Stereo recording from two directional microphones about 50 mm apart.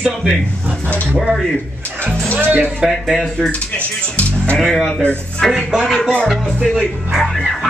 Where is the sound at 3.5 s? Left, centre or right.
Left.